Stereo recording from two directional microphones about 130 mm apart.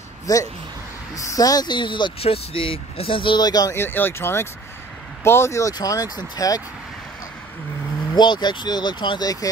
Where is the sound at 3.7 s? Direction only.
15° left (ahead or behind).